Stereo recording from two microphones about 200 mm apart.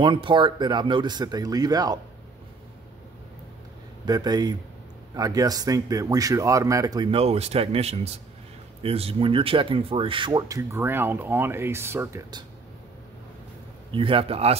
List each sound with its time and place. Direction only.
0.0 s speech: 25° right (ahead or behind)
4.0 s speech: 20° right (ahead or behind)
13.9 s speech: 25° right (ahead or behind)